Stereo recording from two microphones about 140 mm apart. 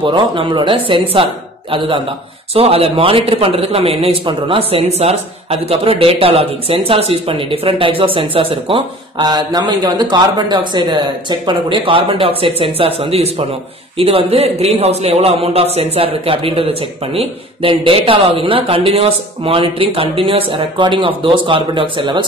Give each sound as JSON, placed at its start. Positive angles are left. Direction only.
{"t": 0.0, "sound": "speech", "side_deg": -35}
{"t": 2.5, "sound": "speech", "side_deg": -45}